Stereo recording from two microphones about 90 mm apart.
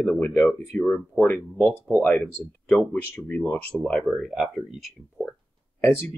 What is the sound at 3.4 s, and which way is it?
Speech, 25° left (ahead or behind).